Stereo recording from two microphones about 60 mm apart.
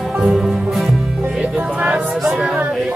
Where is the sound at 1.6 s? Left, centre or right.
Right.